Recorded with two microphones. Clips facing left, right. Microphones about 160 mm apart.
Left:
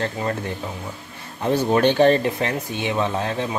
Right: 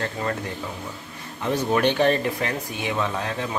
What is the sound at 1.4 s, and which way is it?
Speech, 30° left (ahead or behind).